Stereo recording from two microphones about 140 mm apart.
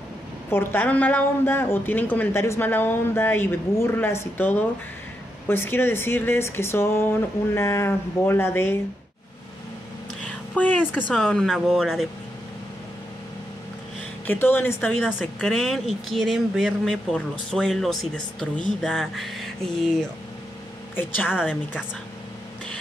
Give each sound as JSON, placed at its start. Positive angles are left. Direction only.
{"t": 0.5, "sound": "a woman's voice", "side_deg": 15}
{"t": 10.5, "sound": "a woman's voice", "side_deg": 10}
{"t": 14.2, "sound": "a woman's voice", "side_deg": 15}
{"t": 15.0, "sound": "speech", "side_deg": 0}
{"t": 20.9, "sound": "a woman's voice", "side_deg": 15}
{"t": 21.4, "sound": "speech", "side_deg": -5}